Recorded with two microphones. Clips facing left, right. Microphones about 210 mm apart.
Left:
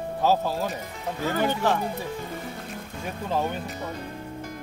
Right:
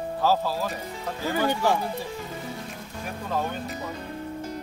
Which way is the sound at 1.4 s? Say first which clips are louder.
Right 1 dB; 15° right (ahead or behind).